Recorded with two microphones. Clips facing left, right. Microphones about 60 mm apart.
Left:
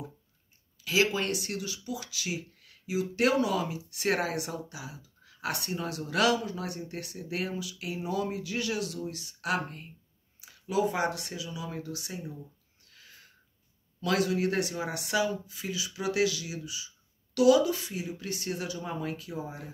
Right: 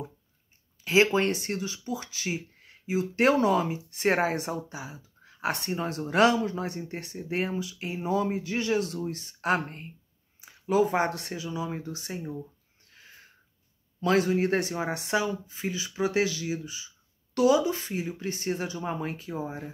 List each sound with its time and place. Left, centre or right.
0.8 s speech: right
12.8 s a sound: right
14.0 s speech: right